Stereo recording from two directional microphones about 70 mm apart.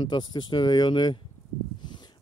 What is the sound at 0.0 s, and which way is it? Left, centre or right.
Speech, left.